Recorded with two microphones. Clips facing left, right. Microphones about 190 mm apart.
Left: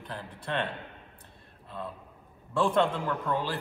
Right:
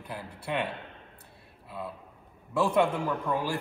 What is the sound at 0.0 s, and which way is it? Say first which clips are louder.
Speech: right 1 dB; 10° right (ahead or behind).